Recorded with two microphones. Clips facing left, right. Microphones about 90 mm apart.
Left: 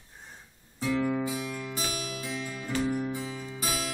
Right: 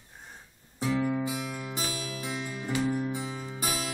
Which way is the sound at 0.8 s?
15° right (ahead or behind).